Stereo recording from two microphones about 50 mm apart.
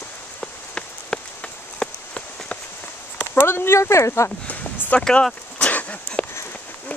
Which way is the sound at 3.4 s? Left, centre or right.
Left.